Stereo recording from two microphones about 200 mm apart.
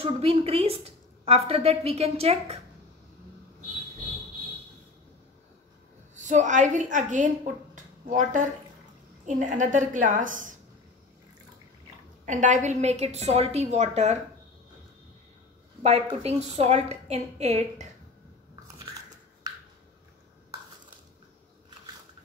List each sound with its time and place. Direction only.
0.0 s a woman's voice: 30° right (ahead or behind)
6.2 s a woman's voice: 40° right (ahead or behind)
7.7 s a sound: 40° right (ahead or behind)
9.2 s a woman's voice: 40° right (ahead or behind)
12.3 s a woman's voice: 40° right (ahead or behind)
15.8 s a woman's voice: 30° right (ahead or behind)